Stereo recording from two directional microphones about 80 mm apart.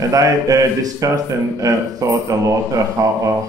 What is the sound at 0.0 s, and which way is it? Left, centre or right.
A man's voice, right.